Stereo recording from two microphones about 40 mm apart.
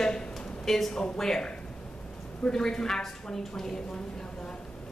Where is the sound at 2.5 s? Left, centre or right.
Centre.